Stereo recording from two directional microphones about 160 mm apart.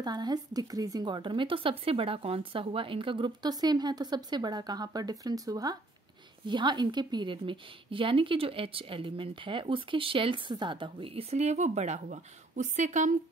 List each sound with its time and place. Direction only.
0.0 s speech: 25° right (ahead or behind); by 13.1 s 50° right (ahead or behind)